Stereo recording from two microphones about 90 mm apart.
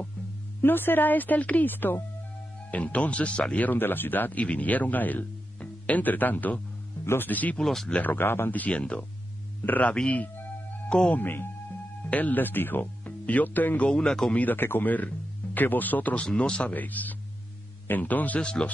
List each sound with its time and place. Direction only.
0.6 s speech: 25° left (ahead or behind)
7.6 s speech: centre (ahead or behind)
7.9 s speech: 20° left (ahead or behind)
14.4 s speech: 20° left (ahead or behind)